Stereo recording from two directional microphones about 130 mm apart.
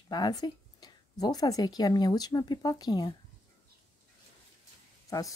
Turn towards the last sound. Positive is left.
turn(degrees=25)  # may be behind; listen again after turning